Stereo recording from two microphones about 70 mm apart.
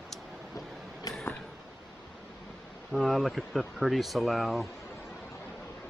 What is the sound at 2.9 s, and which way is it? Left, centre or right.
Speech, centre.